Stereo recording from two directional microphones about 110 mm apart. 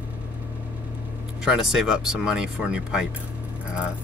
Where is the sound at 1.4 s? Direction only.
5° right (ahead or behind).